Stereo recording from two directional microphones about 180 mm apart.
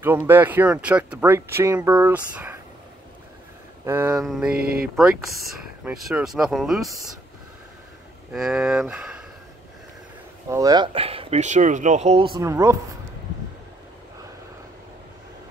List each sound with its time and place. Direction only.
0.0 s speech: 10° right (ahead or behind)
3.8 s speech: 15° right (ahead or behind)
4.2 s speech: centre (ahead or behind)
4.6 s speech: 55° right (ahead or behind)
4.9 s speech: centre (ahead or behind)
8.3 s speech: 5° right (ahead or behind)
10.5 s speech: 20° right (ahead or behind)
12.4 s speech: 15° right (ahead or behind)